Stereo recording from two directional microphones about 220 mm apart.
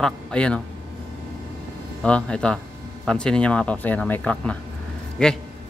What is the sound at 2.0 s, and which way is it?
A man's voice, 5° left (ahead or behind).